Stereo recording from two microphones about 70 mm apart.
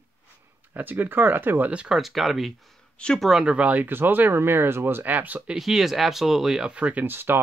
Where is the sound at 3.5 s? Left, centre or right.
Centre.